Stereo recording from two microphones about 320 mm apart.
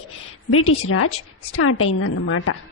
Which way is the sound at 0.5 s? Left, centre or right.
Left.